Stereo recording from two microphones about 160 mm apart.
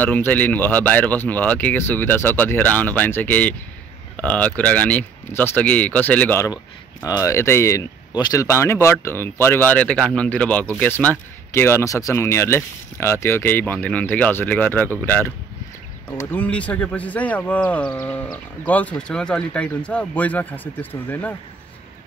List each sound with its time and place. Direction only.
0.0 s speech: 10° left (ahead or behind)
6.5 s speech: 20° left (ahead or behind)